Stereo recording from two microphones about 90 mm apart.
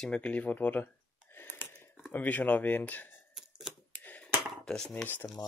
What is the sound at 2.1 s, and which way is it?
Speech, 20° left (ahead or behind).